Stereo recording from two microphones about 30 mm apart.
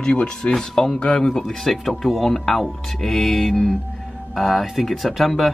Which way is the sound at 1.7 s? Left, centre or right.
Centre.